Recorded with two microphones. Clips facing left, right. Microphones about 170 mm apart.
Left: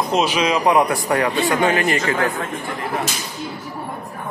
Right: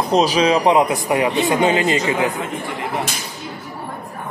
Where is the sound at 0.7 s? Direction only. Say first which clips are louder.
Right 1 dB; 20° right (ahead or behind).